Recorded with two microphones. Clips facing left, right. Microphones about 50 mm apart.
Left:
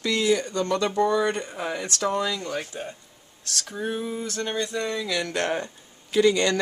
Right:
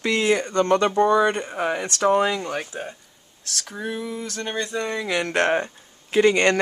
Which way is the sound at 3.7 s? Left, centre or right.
Right.